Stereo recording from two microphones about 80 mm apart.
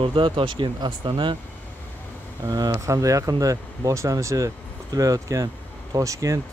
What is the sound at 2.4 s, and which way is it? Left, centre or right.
Speech, right.